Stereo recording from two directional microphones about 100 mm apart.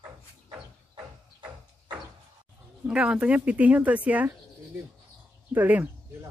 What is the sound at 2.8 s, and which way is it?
Speech, 10° right (ahead or behind).